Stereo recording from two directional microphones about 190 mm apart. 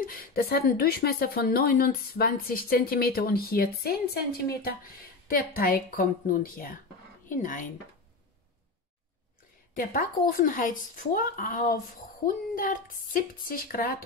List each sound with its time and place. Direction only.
0.0 s speech: 50° left (ahead or behind)
9.8 s speech: 50° left (ahead or behind)